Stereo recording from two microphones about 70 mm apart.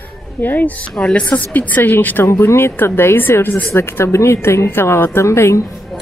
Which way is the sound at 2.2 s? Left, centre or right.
Left.